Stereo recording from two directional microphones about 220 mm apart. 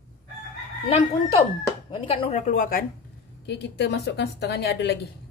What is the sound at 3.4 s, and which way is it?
Speech, 50° left (ahead or behind).